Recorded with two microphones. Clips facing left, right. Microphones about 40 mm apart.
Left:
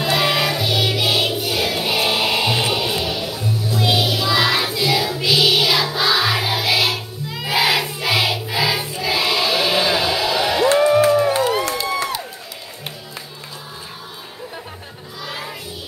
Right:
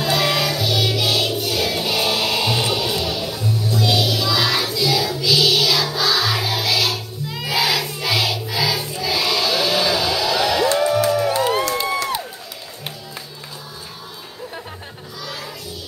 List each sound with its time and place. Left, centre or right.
0.0 s music: centre
7.4 s choir: left
10.7 s music: left
15.2 s a sound: left